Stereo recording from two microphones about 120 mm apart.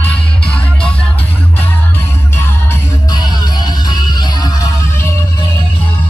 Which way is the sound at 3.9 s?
35° left (ahead or behind).